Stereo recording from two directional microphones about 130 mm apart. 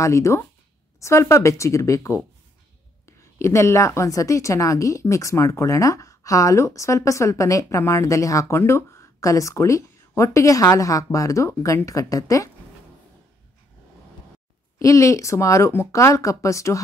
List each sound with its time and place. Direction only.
0.0 s a woman's voice: 20° left (ahead or behind)
14.8 s a woman's voice: 25° left (ahead or behind)